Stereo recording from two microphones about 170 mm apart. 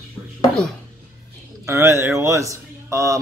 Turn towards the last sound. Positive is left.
turn(degrees=-20)  # may be behind; listen again after turning